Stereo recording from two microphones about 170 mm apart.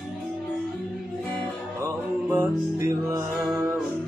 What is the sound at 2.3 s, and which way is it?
Music, 15° right (ahead or behind).